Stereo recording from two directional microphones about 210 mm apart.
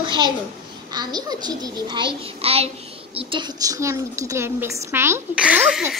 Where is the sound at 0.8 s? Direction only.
20° right (ahead or behind).